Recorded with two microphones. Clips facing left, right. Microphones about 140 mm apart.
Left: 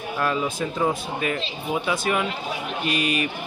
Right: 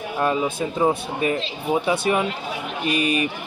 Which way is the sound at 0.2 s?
20° right (ahead or behind).